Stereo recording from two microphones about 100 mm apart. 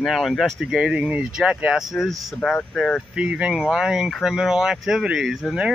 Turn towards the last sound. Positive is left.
turn(degrees=-5)  # may be behind; listen again after turning